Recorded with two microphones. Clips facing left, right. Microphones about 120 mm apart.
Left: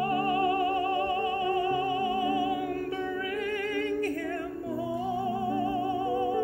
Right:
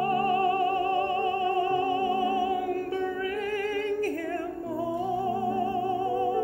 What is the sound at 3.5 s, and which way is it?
Singing, 35° right (ahead or behind).